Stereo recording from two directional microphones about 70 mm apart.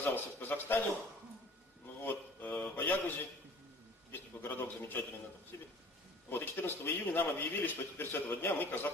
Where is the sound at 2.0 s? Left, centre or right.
Left.